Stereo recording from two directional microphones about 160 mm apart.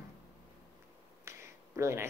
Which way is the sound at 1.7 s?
15° right (ahead or behind).